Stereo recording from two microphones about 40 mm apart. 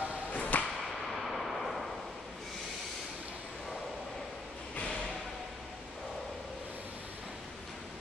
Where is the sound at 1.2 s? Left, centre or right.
Centre.